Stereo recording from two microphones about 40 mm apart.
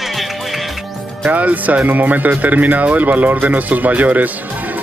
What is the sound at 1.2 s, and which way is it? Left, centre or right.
Speech, right.